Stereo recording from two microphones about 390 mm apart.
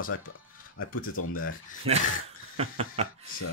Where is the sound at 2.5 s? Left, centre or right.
Centre.